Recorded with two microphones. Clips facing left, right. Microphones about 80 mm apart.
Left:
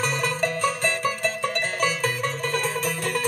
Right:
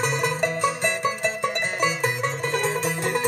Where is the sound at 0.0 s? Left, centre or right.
Centre.